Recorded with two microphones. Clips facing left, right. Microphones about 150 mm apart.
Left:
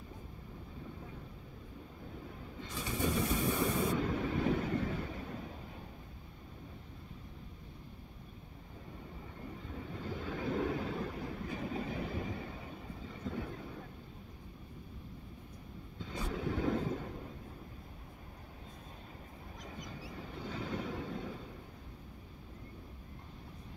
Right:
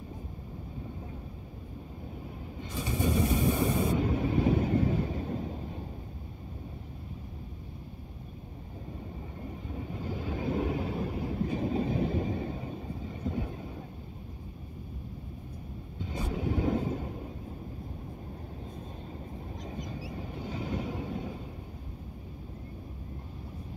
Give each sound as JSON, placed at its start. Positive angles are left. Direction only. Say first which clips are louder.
{"t": 2.6, "sound": "a sound", "louder": "right 5 dB", "side_deg": -20}
{"t": 4.6, "sound": "vehicle", "louder": "right 7 dB", "side_deg": -30}
{"t": 9.7, "sound": "vehicle", "louder": "right 5 dB", "side_deg": -20}
{"t": 11.2, "sound": "train", "louder": "right 9 dB", "side_deg": -30}
{"t": 16.0, "sound": "vehicle", "louder": "right 4 dB", "side_deg": -15}
{"t": 19.6, "sound": "vehicle", "louder": "right 6 dB", "side_deg": -25}
{"t": 20.3, "sound": "vehicle", "louder": "right 4 dB", "side_deg": -15}